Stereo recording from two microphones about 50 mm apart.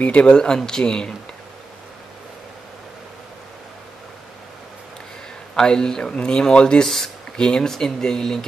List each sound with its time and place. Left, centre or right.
0.0 s speech: left
5.6 s speech: centre